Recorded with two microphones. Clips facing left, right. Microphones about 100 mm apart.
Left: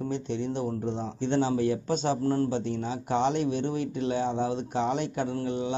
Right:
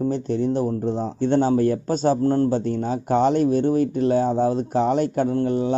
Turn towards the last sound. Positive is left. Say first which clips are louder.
# right 8 dB
turn(degrees=-40)  # may be behind; listen again after turning